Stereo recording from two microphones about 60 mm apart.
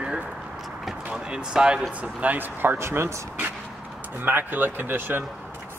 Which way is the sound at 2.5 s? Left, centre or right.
Right.